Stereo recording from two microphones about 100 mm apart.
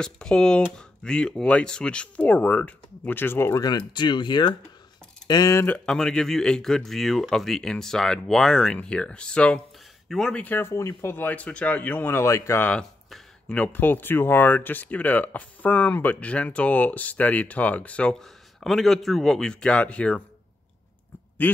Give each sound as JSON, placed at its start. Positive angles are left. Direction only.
{"t": 0.0, "sound": "speech", "side_deg": 5}
{"t": 3.6, "sound": "speech", "side_deg": 50}
{"t": 5.9, "sound": "speech", "side_deg": 5}
{"t": 10.4, "sound": "speech", "side_deg": 20}
{"t": 13.1, "sound": "speech", "side_deg": 10}